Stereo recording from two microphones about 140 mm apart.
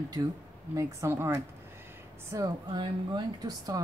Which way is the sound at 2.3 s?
30° right (ahead or behind).